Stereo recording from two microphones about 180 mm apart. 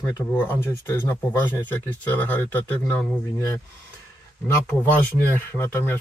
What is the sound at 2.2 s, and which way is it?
Speech, 10° left (ahead or behind).